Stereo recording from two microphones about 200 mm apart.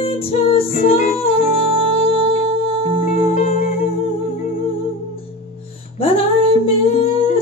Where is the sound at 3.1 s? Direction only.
30° left (ahead or behind).